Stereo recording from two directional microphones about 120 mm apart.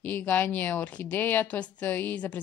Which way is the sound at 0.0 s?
15° left (ahead or behind).